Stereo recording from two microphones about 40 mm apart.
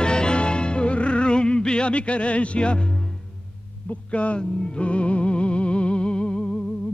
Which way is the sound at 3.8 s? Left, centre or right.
Left.